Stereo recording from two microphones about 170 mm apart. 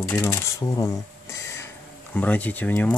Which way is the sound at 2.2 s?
10° left (ahead or behind).